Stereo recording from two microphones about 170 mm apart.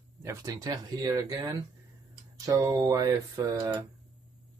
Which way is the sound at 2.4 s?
20° right (ahead or behind).